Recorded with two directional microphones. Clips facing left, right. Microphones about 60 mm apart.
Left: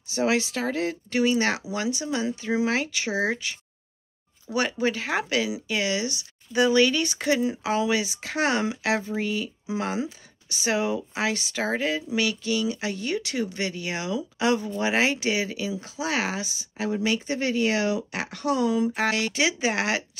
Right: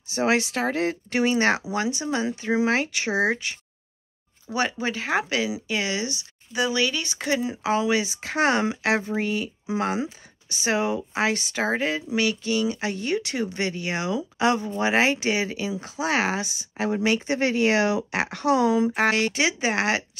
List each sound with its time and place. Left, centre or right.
0.1 s speech: right
4.5 s speech: centre
6.5 s speech: centre; by 18.9 s right
18.9 s speech: right